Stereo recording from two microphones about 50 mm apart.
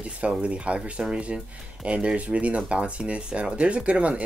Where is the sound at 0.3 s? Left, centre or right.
Right.